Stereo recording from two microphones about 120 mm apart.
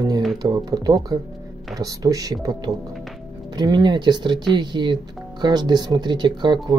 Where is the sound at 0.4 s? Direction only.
35° right (ahead or behind).